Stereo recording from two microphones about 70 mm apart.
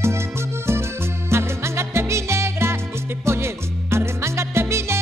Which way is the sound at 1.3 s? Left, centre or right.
Right.